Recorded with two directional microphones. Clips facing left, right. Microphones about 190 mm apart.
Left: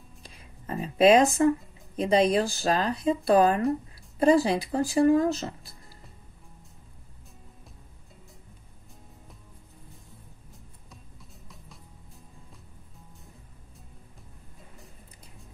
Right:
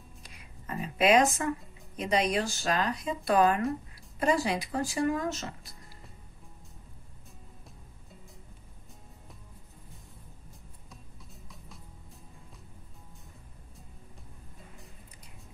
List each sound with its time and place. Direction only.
0.2 s whispering: 30° left (ahead or behind)
2.0 s speech: 30° left (ahead or behind)
10.9 s music: centre (ahead or behind)